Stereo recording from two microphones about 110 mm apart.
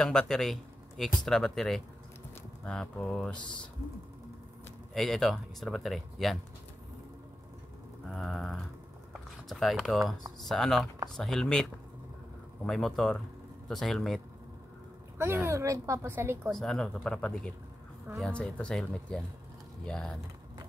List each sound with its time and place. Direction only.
0.0 s speech: 5° left (ahead or behind)
4.9 s speech: centre (ahead or behind)
8.1 s speech: 5° left (ahead or behind)
12.6 s speech: centre (ahead or behind)
15.1 s speech: 20° right (ahead or behind)
16.4 s speech: 5° left (ahead or behind)